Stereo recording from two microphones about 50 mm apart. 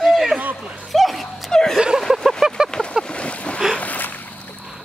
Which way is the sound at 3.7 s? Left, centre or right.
Left.